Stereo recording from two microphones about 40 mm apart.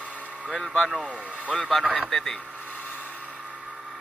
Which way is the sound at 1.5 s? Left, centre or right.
Centre.